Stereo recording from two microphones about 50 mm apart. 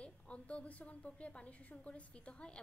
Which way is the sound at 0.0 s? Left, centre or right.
Left.